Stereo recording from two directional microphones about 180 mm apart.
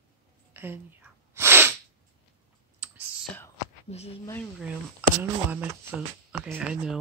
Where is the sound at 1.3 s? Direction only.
15° right (ahead or behind).